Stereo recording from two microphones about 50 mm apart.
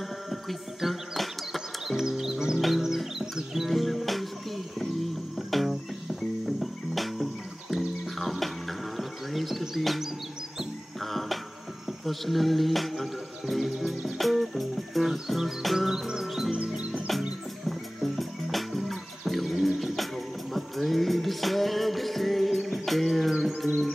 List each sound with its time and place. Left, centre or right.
0.3 s music: centre
5.5 s music: centre
16.5 s music: right
17.6 s music: centre